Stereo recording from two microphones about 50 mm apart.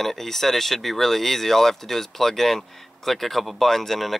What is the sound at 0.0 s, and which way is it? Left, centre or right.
Speech, centre.